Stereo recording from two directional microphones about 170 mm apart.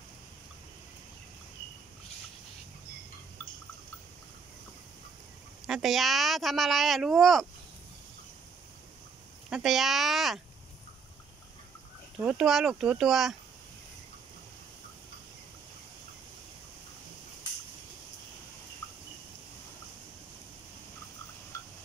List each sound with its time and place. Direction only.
5.7 s speech: centre (ahead or behind)
9.5 s speech: centre (ahead or behind)
12.2 s speech: 5° right (ahead or behind)